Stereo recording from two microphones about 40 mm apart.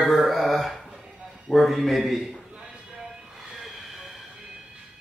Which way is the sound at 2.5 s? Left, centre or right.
Right.